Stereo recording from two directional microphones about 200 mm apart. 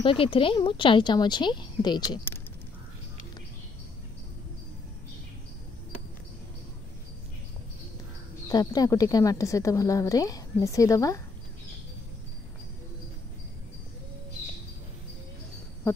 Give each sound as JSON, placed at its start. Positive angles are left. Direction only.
{"t": 0.0, "sound": "a woman's voice", "side_deg": 25}
{"t": 8.5, "sound": "a woman's voice", "side_deg": 20}